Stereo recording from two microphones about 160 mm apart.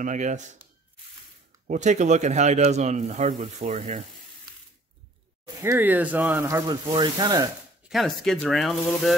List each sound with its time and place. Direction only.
0.0 s speech: 50° right (ahead or behind)
1.7 s speech: 50° right (ahead or behind)
5.6 s speech: 15° right (ahead or behind)
7.9 s speech: centre (ahead or behind)